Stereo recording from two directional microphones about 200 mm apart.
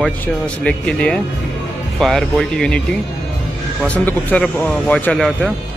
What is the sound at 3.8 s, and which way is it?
Speech, 5° left (ahead or behind).